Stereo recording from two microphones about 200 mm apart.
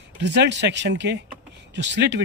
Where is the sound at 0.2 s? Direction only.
60° right (ahead or behind).